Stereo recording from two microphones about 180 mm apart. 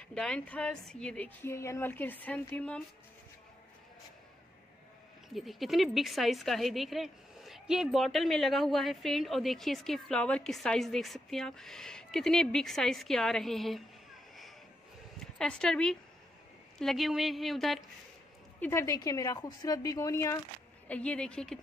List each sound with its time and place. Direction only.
0.0 s speech: 5° left (ahead or behind)
5.3 s a woman's voice: centre (ahead or behind)
15.3 s a woman's voice: 5° left (ahead or behind)
18.6 s a woman's voice: 15° left (ahead or behind)